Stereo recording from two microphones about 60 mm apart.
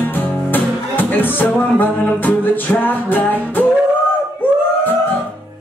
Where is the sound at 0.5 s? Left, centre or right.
Left.